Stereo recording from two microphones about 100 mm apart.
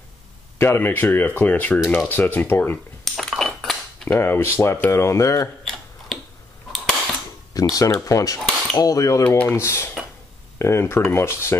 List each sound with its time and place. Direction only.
0.6 s speech: 25° left (ahead or behind)
3.1 s cutlery: 5° left (ahead or behind)
4.1 s speech: 25° left (ahead or behind)
4.9 s cutlery: 30° left (ahead or behind)
5.6 s a sound: 5° left (ahead or behind)
7.5 s cutlery: 35° left (ahead or behind)
9.6 s speech: 25° left (ahead or behind)